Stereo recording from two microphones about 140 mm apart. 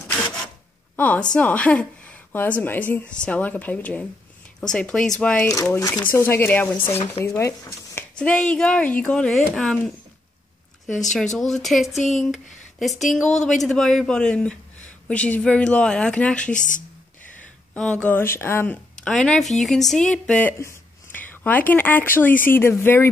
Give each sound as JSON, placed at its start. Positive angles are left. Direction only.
{"t": 0.9, "sound": "speech", "side_deg": 10}
{"t": 5.8, "sound": "speech", "side_deg": 25}
{"t": 8.2, "sound": "speech", "side_deg": 5}
{"t": 11.1, "sound": "speech", "side_deg": 5}
{"t": 13.0, "sound": "speech", "side_deg": 0}
{"t": 16.5, "sound": "speech", "side_deg": 65}
{"t": 17.7, "sound": "speech", "side_deg": 5}
{"t": 19.0, "sound": "speech", "side_deg": 5}